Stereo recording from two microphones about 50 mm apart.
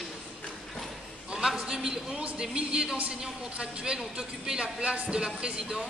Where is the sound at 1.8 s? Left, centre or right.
Centre.